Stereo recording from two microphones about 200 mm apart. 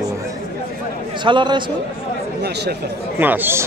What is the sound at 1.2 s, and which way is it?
Speech, 25° right (ahead or behind).